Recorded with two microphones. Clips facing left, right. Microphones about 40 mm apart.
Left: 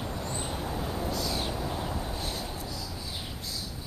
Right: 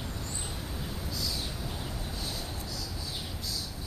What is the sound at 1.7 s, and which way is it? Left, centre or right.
Vehicle, centre.